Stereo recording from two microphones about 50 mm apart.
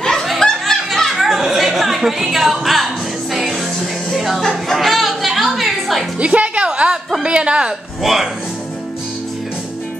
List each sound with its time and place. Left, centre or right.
0.3 s a sound: centre
1.1 s chatter: centre
2.1 s speech: centre
4.1 s music: centre
4.4 s music: centre
6.1 s music: right
7.2 s a woman's voice: right
8.0 s speech: centre